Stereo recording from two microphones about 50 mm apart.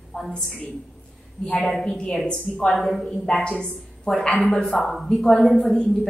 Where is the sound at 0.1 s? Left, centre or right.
Centre.